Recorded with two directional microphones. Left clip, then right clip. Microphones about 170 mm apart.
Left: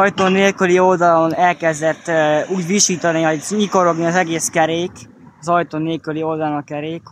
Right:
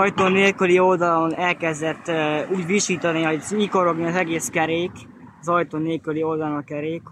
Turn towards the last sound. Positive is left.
turn(degrees=55)  # may be behind; listen again after turning